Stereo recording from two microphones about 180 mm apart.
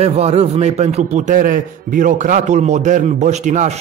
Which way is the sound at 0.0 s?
35° right (ahead or behind).